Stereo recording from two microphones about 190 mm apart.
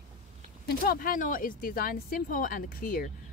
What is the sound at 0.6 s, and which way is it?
Speech, 50° left (ahead or behind).